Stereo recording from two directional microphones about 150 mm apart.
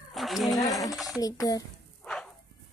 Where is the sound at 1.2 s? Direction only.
25° left (ahead or behind).